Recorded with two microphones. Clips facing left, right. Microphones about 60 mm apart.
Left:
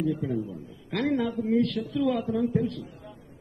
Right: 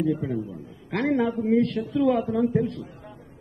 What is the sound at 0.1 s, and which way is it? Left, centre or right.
A woman's voice, right.